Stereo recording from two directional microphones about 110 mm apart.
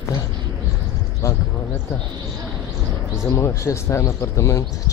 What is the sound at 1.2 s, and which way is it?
Speech, 25° left (ahead or behind).